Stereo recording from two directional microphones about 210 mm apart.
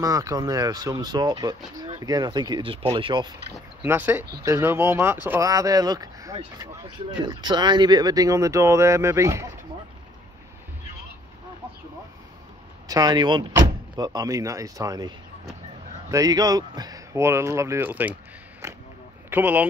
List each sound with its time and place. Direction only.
0.0 s speech: 15° right (ahead or behind)
3.5 s speech: 10° right (ahead or behind)
12.8 s speech: 15° right (ahead or behind)
19.3 s speech: 10° right (ahead or behind)